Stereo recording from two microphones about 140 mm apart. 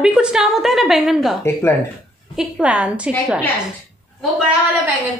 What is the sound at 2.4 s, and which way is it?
Speech, 10° right (ahead or behind).